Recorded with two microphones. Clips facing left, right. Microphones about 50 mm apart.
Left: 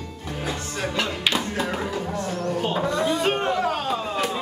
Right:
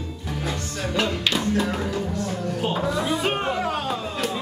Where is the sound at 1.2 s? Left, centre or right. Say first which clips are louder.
Right 2 dB; centre.